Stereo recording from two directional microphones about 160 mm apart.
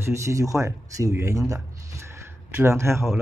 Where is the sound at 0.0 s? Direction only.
20° right (ahead or behind).